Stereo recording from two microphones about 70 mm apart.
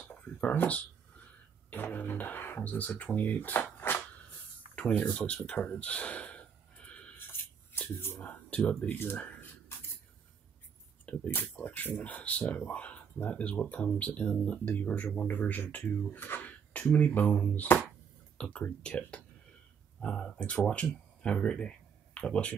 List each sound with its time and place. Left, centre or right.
0.0 s a sound: left
1.7 s speech: left
4.7 s speech: centre
5.5 s gasp: centre
7.9 s speech: left
8.2 s speech: centre
9.1 s a sound: left
11.1 s speech: centre